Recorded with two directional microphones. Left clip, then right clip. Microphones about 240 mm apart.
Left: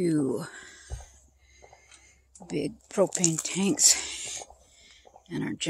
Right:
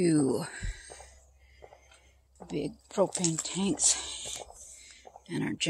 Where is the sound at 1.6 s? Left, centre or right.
Right.